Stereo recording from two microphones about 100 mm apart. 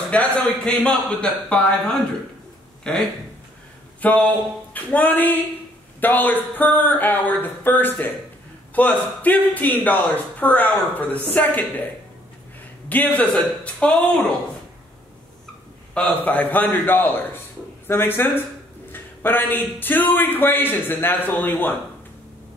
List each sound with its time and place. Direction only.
0.1 s speech: 10° left (ahead or behind)
4.0 s a man's voice: 15° left (ahead or behind)
16.1 s a man's voice: 15° left (ahead or behind)